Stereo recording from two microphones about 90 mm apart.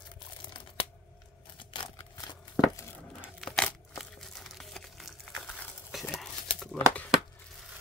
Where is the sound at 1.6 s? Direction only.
60° left (ahead or behind).